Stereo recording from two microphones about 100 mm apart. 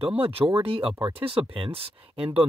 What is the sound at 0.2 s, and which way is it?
Speech, 65° right (ahead or behind).